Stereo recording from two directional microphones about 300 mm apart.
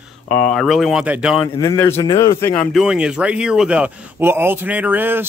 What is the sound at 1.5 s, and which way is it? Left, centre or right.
A man's voice, centre.